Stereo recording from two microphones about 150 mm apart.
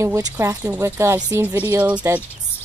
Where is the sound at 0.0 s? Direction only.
20° right (ahead or behind).